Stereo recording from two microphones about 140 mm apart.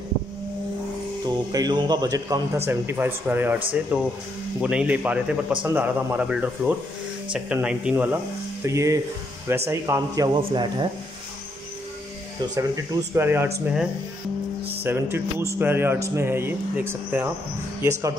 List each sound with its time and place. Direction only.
1.2 s a man's voice: 30° right (ahead or behind)
12.5 s speech: 20° right (ahead or behind)
14.8 s a man's voice: 15° right (ahead or behind)